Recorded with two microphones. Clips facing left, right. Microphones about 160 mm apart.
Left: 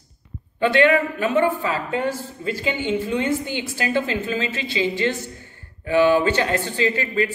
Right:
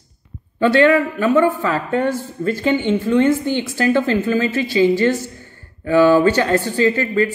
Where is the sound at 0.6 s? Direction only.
40° right (ahead or behind).